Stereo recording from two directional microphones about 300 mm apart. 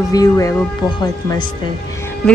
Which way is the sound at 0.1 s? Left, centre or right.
Centre.